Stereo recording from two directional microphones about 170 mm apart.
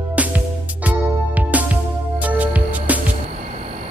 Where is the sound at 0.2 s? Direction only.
10° right (ahead or behind).